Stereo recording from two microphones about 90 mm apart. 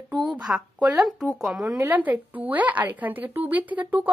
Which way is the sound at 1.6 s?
20° right (ahead or behind).